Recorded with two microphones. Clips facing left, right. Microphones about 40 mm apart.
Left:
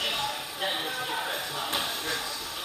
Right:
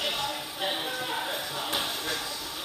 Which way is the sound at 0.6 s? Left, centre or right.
Centre.